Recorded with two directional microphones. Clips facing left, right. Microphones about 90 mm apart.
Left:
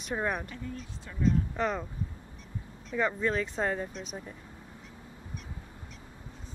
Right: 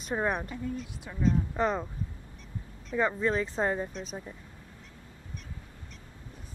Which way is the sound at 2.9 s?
10° right (ahead or behind).